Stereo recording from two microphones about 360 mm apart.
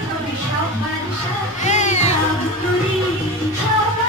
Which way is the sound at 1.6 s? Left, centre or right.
Centre.